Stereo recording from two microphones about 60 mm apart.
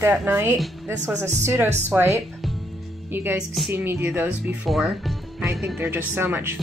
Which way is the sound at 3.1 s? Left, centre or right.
Right.